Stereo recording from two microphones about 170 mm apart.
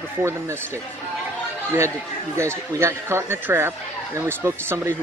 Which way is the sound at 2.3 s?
15° right (ahead or behind).